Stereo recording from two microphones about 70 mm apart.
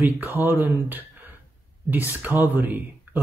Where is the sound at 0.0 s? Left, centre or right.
Right.